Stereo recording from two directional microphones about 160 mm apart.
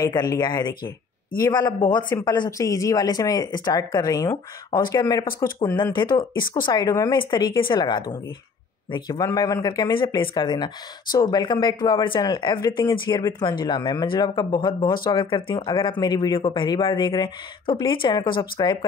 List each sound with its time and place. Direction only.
0.0 s speech: 25° left (ahead or behind)